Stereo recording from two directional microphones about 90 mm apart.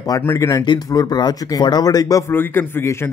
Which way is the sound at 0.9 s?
45° left (ahead or behind).